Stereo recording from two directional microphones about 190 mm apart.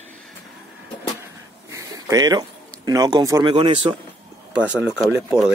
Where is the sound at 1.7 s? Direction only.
20° right (ahead or behind).